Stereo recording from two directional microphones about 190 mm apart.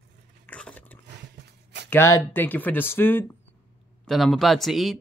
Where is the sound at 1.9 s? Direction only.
10° left (ahead or behind).